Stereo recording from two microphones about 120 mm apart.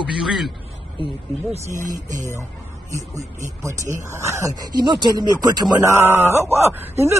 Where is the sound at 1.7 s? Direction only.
30° right (ahead or behind).